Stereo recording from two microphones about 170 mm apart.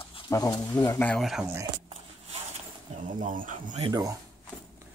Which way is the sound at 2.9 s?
45° right (ahead or behind).